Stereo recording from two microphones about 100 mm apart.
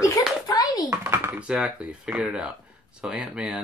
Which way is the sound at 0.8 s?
25° right (ahead or behind).